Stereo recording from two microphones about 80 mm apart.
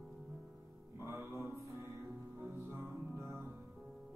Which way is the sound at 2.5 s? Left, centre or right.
Right.